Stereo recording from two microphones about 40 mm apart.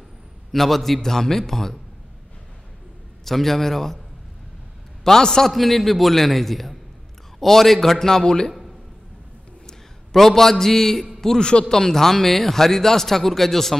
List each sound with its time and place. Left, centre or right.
0.5 s speech: centre
3.3 s a man's voice: centre
5.0 s speech: centre
5.5 s a man's voice: centre
9.7 s a man's voice: centre